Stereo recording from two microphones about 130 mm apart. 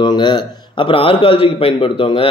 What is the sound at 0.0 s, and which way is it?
A man's voice, 35° left (ahead or behind).